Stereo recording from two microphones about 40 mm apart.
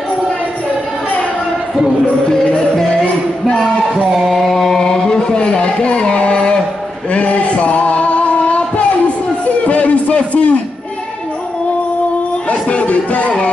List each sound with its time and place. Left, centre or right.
2.3 s music: centre
3.9 s music: centre
4.8 s a sound: centre; by 10.5 s left
12.4 s music: left